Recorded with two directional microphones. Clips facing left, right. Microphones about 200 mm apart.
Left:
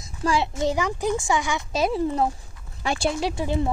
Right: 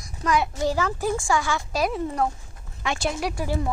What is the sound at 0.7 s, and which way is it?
Speech, 15° left (ahead or behind).